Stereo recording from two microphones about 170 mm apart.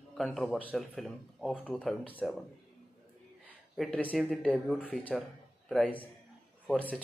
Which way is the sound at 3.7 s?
Centre (ahead or behind).